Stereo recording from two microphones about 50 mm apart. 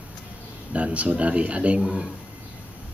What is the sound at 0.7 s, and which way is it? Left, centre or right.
Speech, right.